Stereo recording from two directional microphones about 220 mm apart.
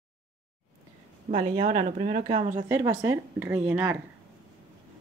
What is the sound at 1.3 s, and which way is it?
Speech, 30° right (ahead or behind).